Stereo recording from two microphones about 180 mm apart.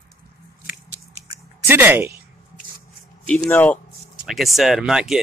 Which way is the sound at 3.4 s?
10° left (ahead or behind).